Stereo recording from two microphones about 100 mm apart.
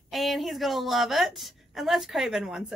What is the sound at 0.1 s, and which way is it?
A woman's voice, centre (ahead or behind).